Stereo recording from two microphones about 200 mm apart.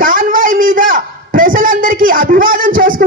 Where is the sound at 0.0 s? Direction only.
45° right (ahead or behind).